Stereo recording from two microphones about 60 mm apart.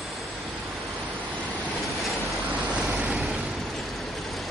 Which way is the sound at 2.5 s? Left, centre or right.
Right.